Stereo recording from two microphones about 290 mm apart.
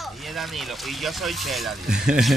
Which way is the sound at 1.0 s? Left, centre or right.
Centre.